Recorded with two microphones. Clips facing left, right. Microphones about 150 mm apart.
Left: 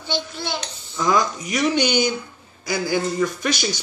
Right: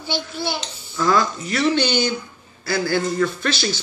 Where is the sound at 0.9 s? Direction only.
15° left (ahead or behind).